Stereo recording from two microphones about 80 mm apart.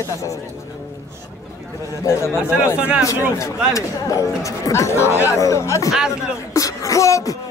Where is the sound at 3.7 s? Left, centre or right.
Left.